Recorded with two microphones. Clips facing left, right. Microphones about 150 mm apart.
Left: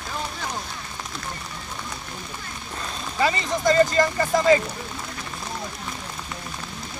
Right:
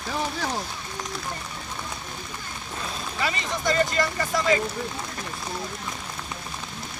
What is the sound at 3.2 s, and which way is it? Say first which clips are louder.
Speech: left 6 dB; 35° left (ahead or behind).